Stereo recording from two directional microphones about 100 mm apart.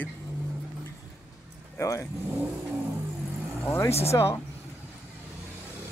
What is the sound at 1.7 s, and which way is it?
Speech, 30° left (ahead or behind).